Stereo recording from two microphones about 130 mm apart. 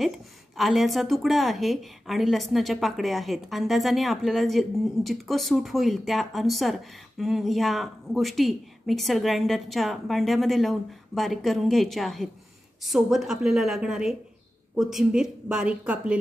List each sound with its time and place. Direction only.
0.6 s a woman's voice: centre (ahead or behind)